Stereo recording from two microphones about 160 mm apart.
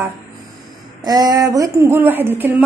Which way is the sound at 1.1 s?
25° right (ahead or behind).